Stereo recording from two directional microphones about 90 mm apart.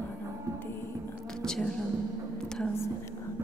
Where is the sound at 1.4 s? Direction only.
5° left (ahead or behind).